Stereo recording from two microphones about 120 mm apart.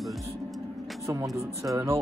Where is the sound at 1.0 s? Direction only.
25° right (ahead or behind).